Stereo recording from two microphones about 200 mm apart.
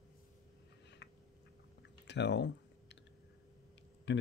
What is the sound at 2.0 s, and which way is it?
Typing, 60° left (ahead or behind).